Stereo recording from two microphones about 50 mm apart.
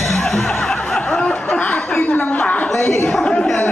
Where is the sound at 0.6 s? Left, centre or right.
Centre.